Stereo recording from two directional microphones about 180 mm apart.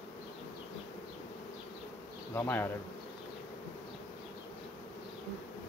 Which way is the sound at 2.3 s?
10° left (ahead or behind).